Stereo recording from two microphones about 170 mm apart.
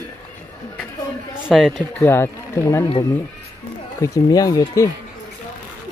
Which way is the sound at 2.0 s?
15° left (ahead or behind).